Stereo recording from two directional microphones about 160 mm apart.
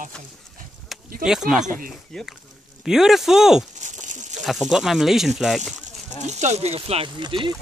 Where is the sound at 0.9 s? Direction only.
Centre (ahead or behind).